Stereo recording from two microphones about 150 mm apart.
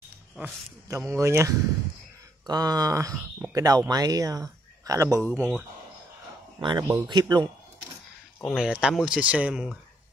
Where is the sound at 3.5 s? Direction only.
25° right (ahead or behind).